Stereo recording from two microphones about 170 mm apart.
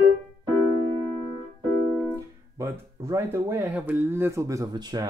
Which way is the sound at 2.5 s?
20° right (ahead or behind).